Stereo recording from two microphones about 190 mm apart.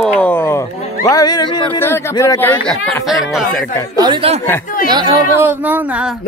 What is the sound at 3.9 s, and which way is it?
Speech, 25° right (ahead or behind).